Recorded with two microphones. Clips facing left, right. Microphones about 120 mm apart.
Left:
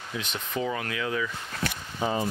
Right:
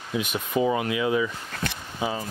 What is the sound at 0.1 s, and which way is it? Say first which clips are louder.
Speech: right 7 dB; 15° right (ahead or behind).